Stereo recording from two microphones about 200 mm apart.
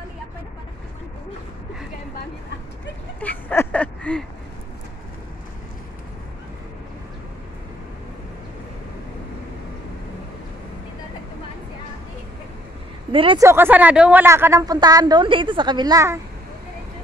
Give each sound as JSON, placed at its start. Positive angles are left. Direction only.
{"t": 3.2, "sound": "a sound", "side_deg": 10}
{"t": 13.1, "sound": "speech", "side_deg": -25}
{"t": 13.4, "sound": "a woman's voice", "side_deg": -10}